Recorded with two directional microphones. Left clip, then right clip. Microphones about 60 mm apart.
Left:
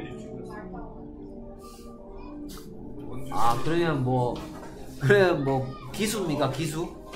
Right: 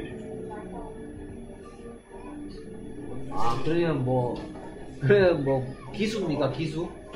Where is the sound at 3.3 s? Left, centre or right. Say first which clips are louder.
Left 3 dB; left.